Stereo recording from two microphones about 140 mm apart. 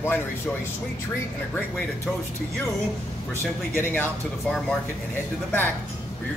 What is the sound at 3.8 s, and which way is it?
Speech, 10° left (ahead or behind).